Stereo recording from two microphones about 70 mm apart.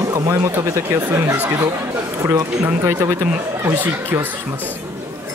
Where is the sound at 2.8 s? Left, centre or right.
Right.